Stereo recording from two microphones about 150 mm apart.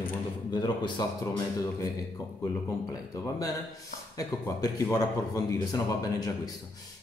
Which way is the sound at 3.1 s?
20° left (ahead or behind).